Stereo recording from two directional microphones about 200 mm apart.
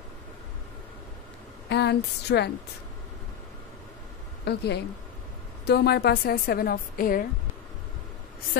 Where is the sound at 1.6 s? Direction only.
55° left (ahead or behind).